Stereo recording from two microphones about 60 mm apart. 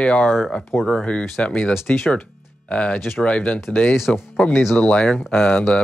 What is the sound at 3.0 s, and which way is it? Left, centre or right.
Speech, centre.